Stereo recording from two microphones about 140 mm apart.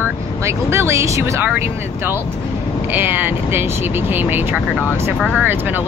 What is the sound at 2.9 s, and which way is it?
Speech, 15° right (ahead or behind).